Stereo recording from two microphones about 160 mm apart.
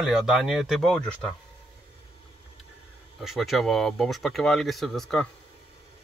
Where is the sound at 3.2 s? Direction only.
Centre (ahead or behind).